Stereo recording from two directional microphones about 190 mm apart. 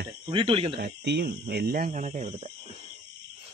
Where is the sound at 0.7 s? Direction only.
60° right (ahead or behind); by 2.5 s 35° right (ahead or behind).